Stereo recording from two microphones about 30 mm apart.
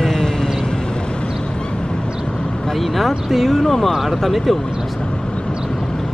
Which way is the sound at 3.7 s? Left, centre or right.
Centre.